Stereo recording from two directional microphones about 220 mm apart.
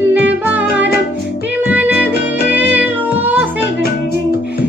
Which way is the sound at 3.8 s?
45° left (ahead or behind).